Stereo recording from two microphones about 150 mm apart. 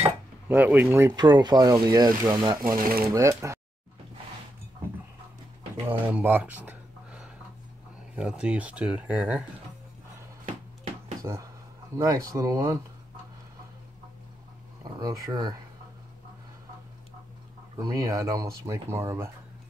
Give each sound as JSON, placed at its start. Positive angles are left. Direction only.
{"t": 0.0, "sound": "cutlery", "side_deg": -10}
{"t": 1.1, "sound": "speech", "side_deg": -30}
{"t": 5.8, "sound": "speech", "side_deg": -15}
{"t": 11.3, "sound": "speech", "side_deg": -20}
{"t": 15.0, "sound": "speech", "side_deg": -25}
{"t": 17.7, "sound": "speech", "side_deg": -25}